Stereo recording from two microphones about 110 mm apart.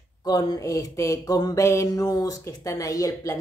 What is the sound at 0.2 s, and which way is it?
Mantra, 35° left (ahead or behind).